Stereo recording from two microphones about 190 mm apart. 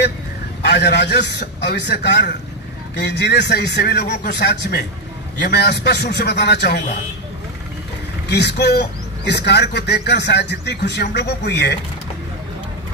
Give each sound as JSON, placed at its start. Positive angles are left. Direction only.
{"t": 0.6, "sound": "a man's voice", "side_deg": 60}
{"t": 8.3, "sound": "a man's voice", "side_deg": 60}